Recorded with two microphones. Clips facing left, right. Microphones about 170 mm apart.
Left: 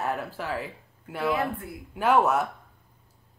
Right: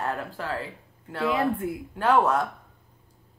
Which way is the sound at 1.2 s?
20° right (ahead or behind).